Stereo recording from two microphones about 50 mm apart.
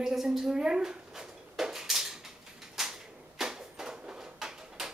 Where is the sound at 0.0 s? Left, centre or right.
Centre.